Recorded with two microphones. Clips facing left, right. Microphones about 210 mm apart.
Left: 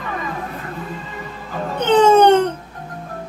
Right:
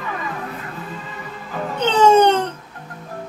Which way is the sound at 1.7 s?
55° left (ahead or behind).